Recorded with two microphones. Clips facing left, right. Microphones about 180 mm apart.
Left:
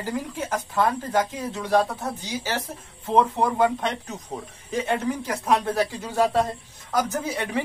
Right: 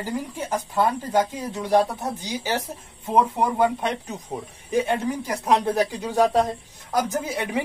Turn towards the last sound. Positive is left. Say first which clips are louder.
# right 1 dB
turn(degrees=-15)  # may be behind; listen again after turning